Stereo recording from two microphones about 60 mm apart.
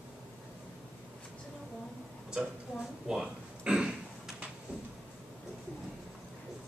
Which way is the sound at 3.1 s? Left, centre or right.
Centre.